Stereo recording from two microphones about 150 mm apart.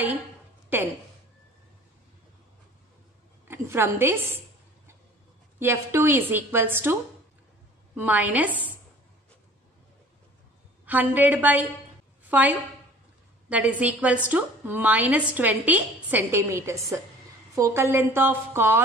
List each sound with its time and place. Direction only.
0.7 s speech: 15° right (ahead or behind)
3.4 s a woman's voice: 15° right (ahead or behind)
5.6 s a woman's voice: 15° right (ahead or behind)
10.9 s a woman's voice: 10° right (ahead or behind)